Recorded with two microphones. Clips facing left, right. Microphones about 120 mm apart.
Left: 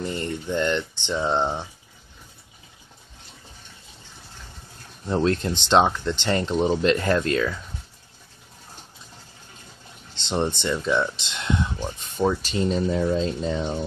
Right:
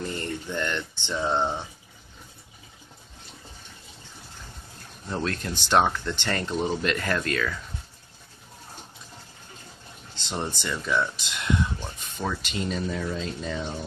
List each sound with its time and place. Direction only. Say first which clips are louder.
0.1 s speech: left 4 dB; 20° left (ahead or behind)
5.1 s speech: left 7 dB; 30° left (ahead or behind)
10.1 s speech: left 7 dB; 25° left (ahead or behind)